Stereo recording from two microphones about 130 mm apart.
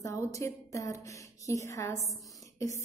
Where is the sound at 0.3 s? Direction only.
25° left (ahead or behind).